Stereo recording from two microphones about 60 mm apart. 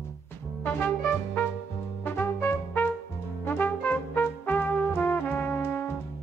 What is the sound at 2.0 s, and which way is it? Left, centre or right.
Brass instrument, left.